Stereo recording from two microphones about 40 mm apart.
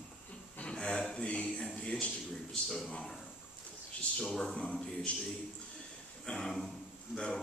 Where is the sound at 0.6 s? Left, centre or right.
Left.